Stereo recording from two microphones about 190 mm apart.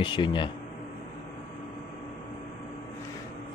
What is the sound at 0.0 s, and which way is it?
Speech, 25° left (ahead or behind).